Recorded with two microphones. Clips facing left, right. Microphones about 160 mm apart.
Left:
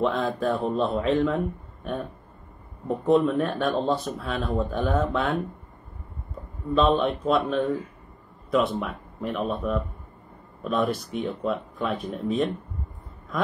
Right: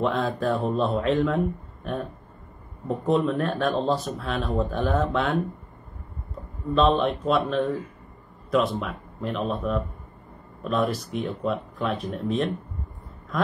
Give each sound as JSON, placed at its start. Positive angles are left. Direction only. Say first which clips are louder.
{"t": 0.0, "sound": "speech", "louder": "even", "side_deg": 0}
{"t": 3.1, "sound": "speech", "louder": "left 2 dB", "side_deg": 0}
{"t": 6.7, "sound": "speech", "louder": "even", "side_deg": 0}